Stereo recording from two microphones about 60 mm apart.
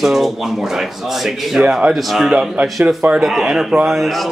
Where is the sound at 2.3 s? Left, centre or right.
Centre.